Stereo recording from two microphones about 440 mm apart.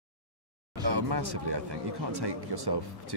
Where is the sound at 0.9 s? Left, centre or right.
Right.